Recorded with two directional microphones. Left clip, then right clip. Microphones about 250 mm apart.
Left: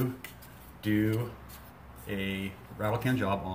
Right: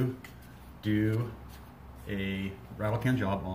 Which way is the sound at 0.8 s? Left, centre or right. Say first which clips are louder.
Left 1 dB; centre.